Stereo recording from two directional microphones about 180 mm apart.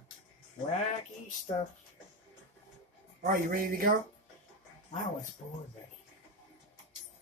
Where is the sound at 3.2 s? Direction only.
50° right (ahead or behind).